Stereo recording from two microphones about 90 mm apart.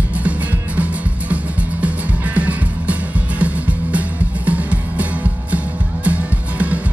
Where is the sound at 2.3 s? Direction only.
15° right (ahead or behind).